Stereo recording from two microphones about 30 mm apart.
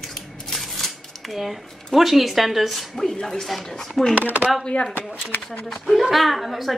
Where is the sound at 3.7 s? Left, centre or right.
Centre.